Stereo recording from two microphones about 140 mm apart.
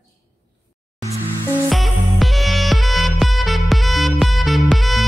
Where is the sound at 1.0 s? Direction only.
20° right (ahead or behind).